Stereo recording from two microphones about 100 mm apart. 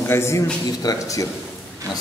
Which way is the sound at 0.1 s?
25° left (ahead or behind).